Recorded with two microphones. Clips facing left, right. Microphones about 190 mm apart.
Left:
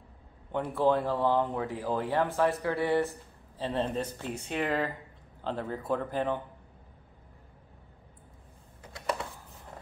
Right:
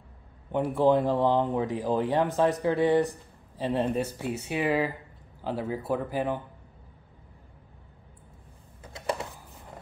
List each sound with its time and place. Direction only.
0.5 s speech: 15° right (ahead or behind)